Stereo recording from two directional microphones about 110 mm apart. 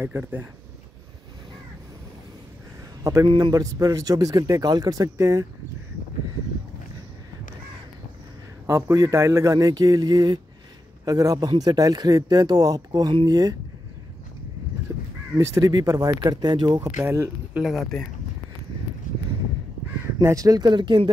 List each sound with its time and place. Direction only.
0.0 s speech: 20° right (ahead or behind)
3.0 s a man's voice: 30° right (ahead or behind)
3.3 s a man's voice: 40° right (ahead or behind); by 5.5 s 25° right (ahead or behind)
8.6 s a man's voice: 20° right (ahead or behind)
14.9 s crow: 25° right (ahead or behind)
15.3 s a man's voice: 35° right (ahead or behind)
16.9 s speech: 25° right (ahead or behind)
17.6 s speech: 5° right (ahead or behind)
20.2 s a man's voice: 30° right (ahead or behind); by 21.1 s 45° right (ahead or behind)